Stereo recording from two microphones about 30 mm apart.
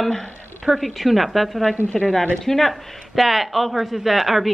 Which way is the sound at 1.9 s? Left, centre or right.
Centre.